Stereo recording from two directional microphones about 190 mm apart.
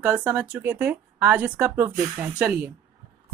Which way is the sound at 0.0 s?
10° right (ahead or behind).